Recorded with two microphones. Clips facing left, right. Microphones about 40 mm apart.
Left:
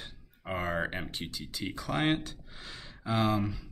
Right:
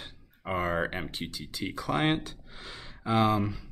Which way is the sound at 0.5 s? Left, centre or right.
Centre.